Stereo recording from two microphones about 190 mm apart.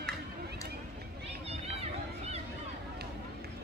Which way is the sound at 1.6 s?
35° right (ahead or behind).